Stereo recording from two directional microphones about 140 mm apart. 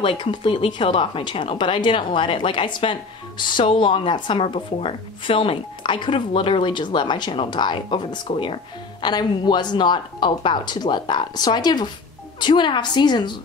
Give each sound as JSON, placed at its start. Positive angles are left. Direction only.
{"t": 0.0, "sound": "speech", "side_deg": 40}